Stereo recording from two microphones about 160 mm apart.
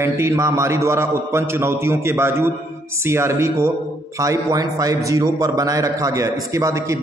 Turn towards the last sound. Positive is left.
turn(degrees=-20)  # may be behind; listen again after turning